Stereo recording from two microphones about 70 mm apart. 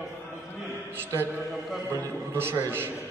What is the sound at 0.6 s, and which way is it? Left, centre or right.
Speech, right.